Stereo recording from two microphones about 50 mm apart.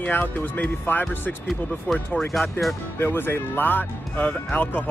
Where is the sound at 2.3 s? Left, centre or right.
Centre.